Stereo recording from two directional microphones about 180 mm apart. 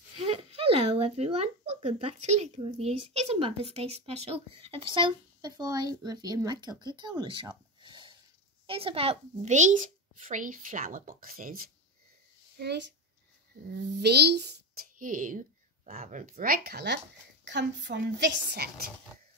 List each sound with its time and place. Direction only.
0.2 s speech: 35° right (ahead or behind)
7.0 s a sound: 25° right (ahead or behind)
8.6 s a woman's voice: 30° right (ahead or behind); by 11.7 s 50° right (ahead or behind)
12.5 s a child's voice: 65° right (ahead or behind)
15.0 s speech: 50° right (ahead or behind); by 17.0 s 65° right (ahead or behind)
17.5 s speech: 75° right (ahead or behind)
18.2 s a child's voice: 65° right (ahead or behind)